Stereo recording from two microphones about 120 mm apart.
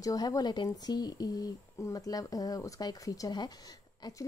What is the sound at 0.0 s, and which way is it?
Speech, 30° left (ahead or behind).